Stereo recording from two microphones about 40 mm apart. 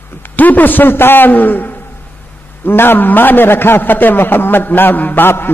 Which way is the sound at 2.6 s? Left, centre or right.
Left.